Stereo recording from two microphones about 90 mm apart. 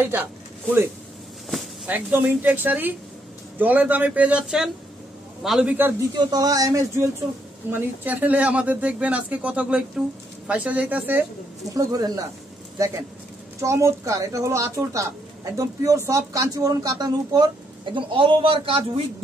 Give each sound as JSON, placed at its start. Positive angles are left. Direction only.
{"t": 0.0, "sound": "speech", "side_deg": -20}
{"t": 1.9, "sound": "speech", "side_deg": -20}
{"t": 6.1, "sound": "speech", "side_deg": -45}
{"t": 7.7, "sound": "speech", "side_deg": -20}
{"t": 11.7, "sound": "speech", "side_deg": -40}
{"t": 17.8, "sound": "a man's voice", "side_deg": -65}